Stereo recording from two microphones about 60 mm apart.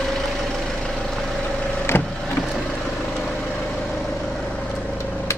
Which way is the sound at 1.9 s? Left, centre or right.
Left.